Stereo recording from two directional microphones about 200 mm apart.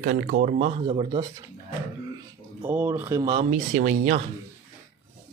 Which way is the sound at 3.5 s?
40° right (ahead or behind).